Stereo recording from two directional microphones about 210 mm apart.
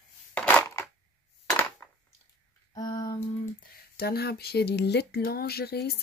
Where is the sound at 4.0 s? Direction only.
50° left (ahead or behind).